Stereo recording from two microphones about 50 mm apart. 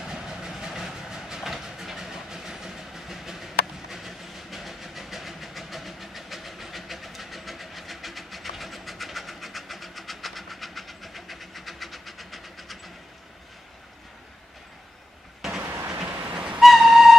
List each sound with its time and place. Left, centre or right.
0.0 s train: centre
15.4 s vehicle: centre
16.0 s train: right
16.5 s train: centre